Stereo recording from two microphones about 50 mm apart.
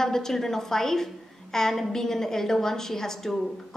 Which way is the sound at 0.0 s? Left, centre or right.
Centre.